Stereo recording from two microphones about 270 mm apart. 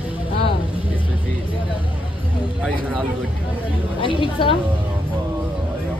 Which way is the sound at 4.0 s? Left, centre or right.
Centre.